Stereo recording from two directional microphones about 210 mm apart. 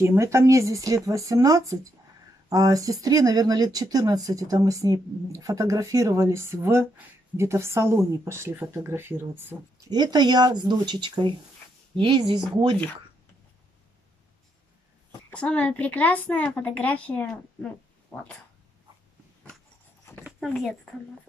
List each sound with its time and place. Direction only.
0.0 s speech: 15° right (ahead or behind)
15.3 s a woman's voice: 5° left (ahead or behind)
20.2 s a sound: centre (ahead or behind)